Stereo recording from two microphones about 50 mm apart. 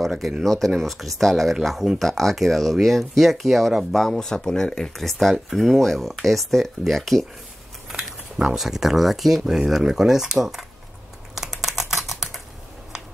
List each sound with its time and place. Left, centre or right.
0.0 s a sound: centre
0.4 s speech: centre
7.9 s speech: centre
11.3 s typing: centre